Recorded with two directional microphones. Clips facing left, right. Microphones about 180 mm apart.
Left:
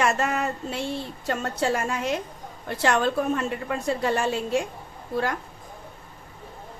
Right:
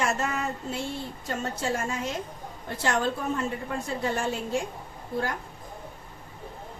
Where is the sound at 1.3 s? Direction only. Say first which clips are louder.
Left 5 dB; 70° left (ahead or behind).